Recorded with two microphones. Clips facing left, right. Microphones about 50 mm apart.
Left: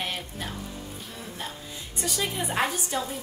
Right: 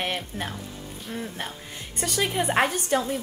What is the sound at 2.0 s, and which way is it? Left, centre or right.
A woman's voice, right.